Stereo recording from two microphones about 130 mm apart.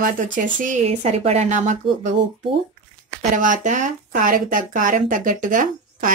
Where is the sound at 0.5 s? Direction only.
80° right.